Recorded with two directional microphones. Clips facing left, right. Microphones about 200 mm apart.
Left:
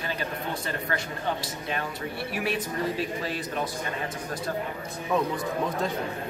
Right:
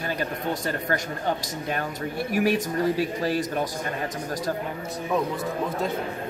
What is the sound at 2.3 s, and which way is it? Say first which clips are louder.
A man's voice: right 8 dB; 45° right (ahead or behind).